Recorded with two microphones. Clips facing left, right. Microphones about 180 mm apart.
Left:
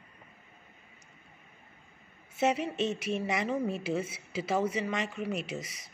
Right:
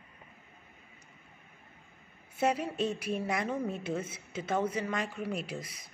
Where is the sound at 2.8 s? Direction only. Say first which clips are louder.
Left 1 dB; 75° left (ahead or behind).